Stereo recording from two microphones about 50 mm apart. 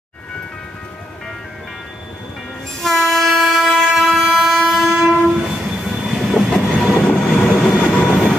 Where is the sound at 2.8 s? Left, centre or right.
Centre.